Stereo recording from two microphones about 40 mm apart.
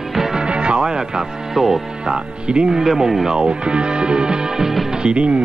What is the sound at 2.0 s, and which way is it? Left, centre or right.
Speech, right.